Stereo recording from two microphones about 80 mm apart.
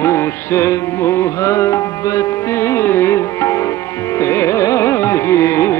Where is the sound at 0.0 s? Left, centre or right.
Left.